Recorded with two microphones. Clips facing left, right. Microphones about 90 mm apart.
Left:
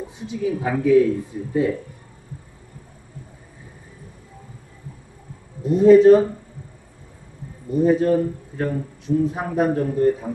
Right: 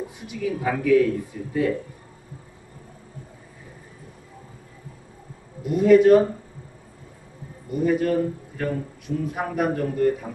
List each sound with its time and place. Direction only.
0.2 s speech: 25° left (ahead or behind)
5.6 s a man's voice: 30° left (ahead or behind)
7.7 s speech: 30° left (ahead or behind)